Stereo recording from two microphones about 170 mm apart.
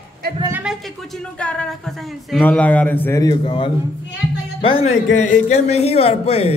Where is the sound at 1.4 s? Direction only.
5° left (ahead or behind); by 4.9 s 35° left (ahead or behind).